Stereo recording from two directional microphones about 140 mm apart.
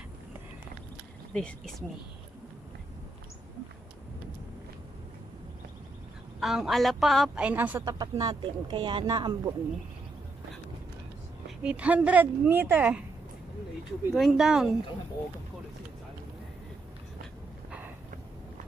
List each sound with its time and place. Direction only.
1.3 s a woman's voice: 5° left (ahead or behind)
6.4 s a woman's voice: centre (ahead or behind)
7.8 s speech: 25° right (ahead or behind)
11.4 s speech: 10° right (ahead or behind)
14.1 s a woman's voice: centre (ahead or behind)
17.6 s a sound: 10° right (ahead or behind)